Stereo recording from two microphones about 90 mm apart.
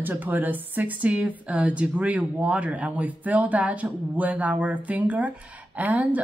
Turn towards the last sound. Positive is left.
turn(degrees=-15)  # may be behind; listen again after turning